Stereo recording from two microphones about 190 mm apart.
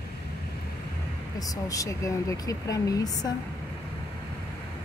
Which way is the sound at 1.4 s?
20° left (ahead or behind).